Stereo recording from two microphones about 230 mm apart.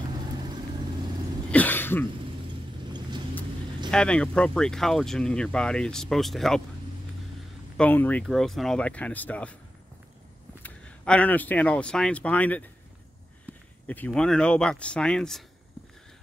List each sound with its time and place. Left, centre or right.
1.5 s cough: centre
2.8 s vehicle: centre
3.9 s speech: centre
7.7 s speech: centre
10.6 s speech: centre
13.5 s a sound: centre
13.8 s speech: centre